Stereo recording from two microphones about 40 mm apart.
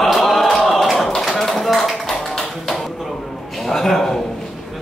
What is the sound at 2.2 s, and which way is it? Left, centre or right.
Music, centre.